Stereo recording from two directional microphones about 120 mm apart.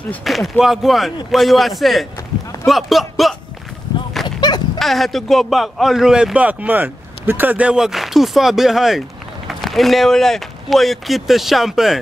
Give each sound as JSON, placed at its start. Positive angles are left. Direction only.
{"t": 0.2, "sound": "a man's voice", "side_deg": 0}
{"t": 4.4, "sound": "dog", "side_deg": 35}
{"t": 4.7, "sound": "a man's voice", "side_deg": 0}